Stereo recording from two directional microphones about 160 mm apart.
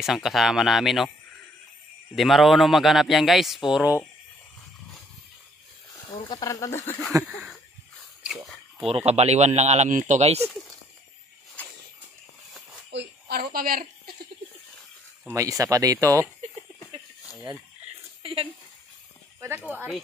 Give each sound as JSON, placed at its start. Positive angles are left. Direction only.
{"t": 0.0, "sound": "speech", "side_deg": 0}
{"t": 2.1, "sound": "speech", "side_deg": 0}
{"t": 6.1, "sound": "speech", "side_deg": 25}
{"t": 7.2, "sound": "a sound", "side_deg": 0}
{"t": 8.8, "sound": "speech", "side_deg": -40}
{"t": 12.9, "sound": "speech", "side_deg": -85}
{"t": 15.2, "sound": "speech", "side_deg": -20}
{"t": 18.2, "sound": "speech", "side_deg": -35}
{"t": 19.4, "sound": "speech", "side_deg": -10}